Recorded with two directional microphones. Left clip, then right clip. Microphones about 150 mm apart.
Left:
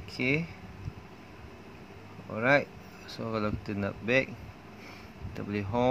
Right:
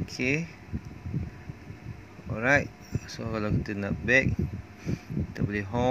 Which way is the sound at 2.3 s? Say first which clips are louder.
Right 1 dB; 15° right (ahead or behind).